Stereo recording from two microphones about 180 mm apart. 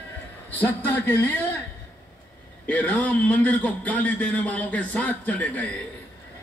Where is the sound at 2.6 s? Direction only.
10° left (ahead or behind).